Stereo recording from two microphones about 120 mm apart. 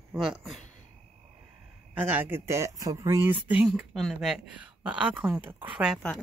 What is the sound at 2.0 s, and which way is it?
Speech, 15° right (ahead or behind).